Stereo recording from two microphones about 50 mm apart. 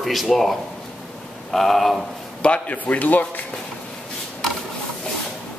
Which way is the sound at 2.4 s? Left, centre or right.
Left.